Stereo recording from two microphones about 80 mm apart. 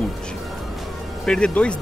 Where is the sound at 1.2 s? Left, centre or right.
Centre.